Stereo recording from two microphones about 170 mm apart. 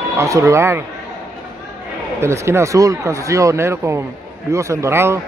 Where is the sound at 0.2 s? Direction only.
15° right (ahead or behind).